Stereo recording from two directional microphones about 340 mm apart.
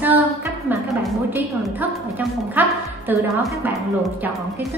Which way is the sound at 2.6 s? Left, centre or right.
Centre.